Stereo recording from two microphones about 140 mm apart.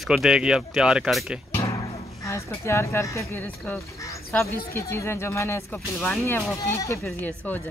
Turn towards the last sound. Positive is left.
turn(degrees=10)  # may be behind; listen again after turning